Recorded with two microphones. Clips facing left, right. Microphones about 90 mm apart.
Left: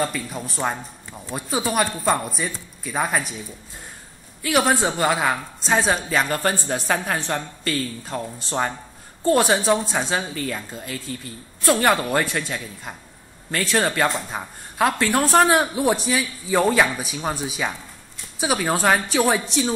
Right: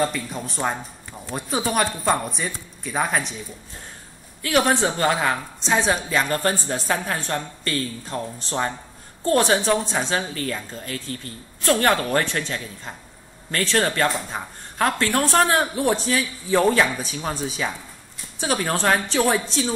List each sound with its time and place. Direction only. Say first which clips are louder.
0.0 s speech: right 1 dB; centre (ahead or behind)
4.4 s a woman's voice: even; 15° left (ahead or behind)
6.2 s a woman's voice: even; 15° left (ahead or behind)
14.0 s a woman's voice: even; 5° left (ahead or behind)